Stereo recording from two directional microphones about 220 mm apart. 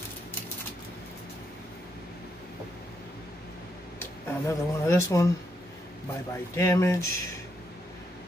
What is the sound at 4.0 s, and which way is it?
Speech, 10° left (ahead or behind).